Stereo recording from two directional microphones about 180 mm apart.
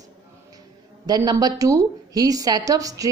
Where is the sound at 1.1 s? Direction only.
20° right (ahead or behind).